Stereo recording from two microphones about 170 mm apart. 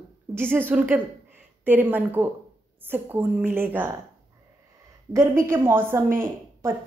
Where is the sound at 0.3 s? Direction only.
10° right (ahead or behind).